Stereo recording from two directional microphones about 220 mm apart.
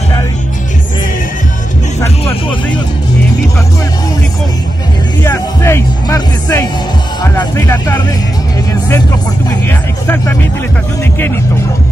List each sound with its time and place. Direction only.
5.2 s music: 10° left (ahead or behind)
7.3 s speech: 15° left (ahead or behind)
9.7 s music: 10° left (ahead or behind)